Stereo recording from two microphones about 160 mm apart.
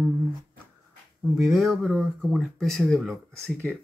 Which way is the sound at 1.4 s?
Centre (ahead or behind).